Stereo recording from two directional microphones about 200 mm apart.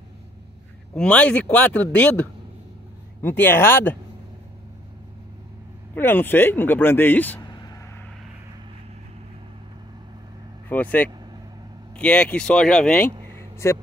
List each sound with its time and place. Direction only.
0.9 s speech: 5° left (ahead or behind)
5.9 s speech: 10° left (ahead or behind)
7.4 s vehicle: 20° left (ahead or behind)
10.7 s speech: 10° left (ahead or behind)
13.4 s a sound: 15° left (ahead or behind)